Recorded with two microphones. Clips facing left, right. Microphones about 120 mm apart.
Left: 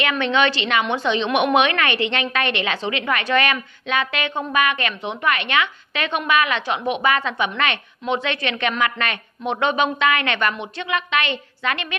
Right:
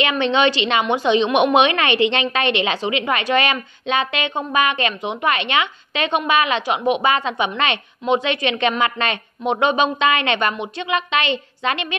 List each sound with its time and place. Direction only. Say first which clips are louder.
0.0 s a woman's voice: right 2 dB; 20° right (ahead or behind)